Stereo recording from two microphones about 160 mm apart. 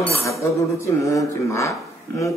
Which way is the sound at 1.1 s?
20° left (ahead or behind).